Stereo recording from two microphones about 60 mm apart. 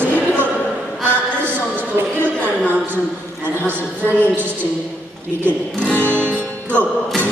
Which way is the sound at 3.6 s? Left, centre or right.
Right.